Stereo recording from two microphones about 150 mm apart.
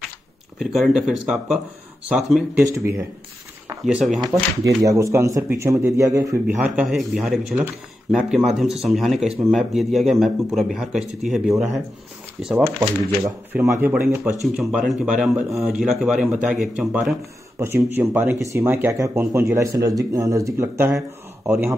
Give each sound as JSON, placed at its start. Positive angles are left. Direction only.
{"t": 0.6, "sound": "speech", "side_deg": 0}
{"t": 2.6, "sound": "speech", "side_deg": -20}
{"t": 3.8, "sound": "speech", "side_deg": 0}
{"t": 4.2, "sound": "speech", "side_deg": -20}
{"t": 6.4, "sound": "speech", "side_deg": -10}
{"t": 13.5, "sound": "speech", "side_deg": -15}
{"t": 14.4, "sound": "speech", "side_deg": 0}
{"t": 17.6, "sound": "speech", "side_deg": -20}